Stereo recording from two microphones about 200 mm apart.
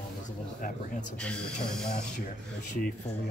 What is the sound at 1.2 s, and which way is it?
Speech, 5° left (ahead or behind).